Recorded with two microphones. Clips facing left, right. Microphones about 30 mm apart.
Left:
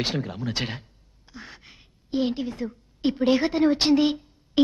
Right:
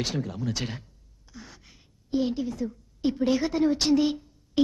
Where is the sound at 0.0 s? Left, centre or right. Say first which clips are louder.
Left 2 dB; left.